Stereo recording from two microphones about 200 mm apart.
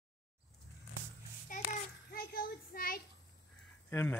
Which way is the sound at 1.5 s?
40° left (ahead or behind).